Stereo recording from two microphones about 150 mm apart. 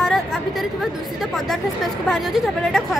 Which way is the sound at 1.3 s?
Centre (ahead or behind).